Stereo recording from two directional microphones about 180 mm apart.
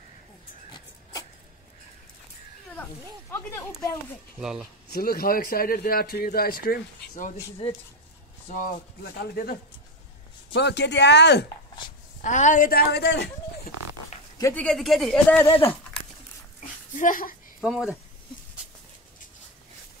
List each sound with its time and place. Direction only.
2.7 s speech: 10° left (ahead or behind)
4.4 s speech: 5° right (ahead or behind)
4.9 s a man's voice: 55° left (ahead or behind)
8.5 s speech: 45° left (ahead or behind)
9.0 s a man's voice: 60° left (ahead or behind)
10.5 s speech: 70° left (ahead or behind)
12.2 s speech: 45° left (ahead or behind); by 13.3 s 70° left (ahead or behind)
14.4 s speech: 10° left (ahead or behind)
16.9 s speech: 50° left (ahead or behind)
17.6 s speech: centre (ahead or behind)